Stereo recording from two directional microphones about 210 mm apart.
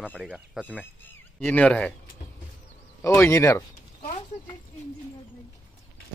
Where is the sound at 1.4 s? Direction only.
5° left (ahead or behind).